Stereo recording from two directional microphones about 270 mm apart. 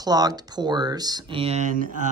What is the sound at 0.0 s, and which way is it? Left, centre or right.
Speech, centre.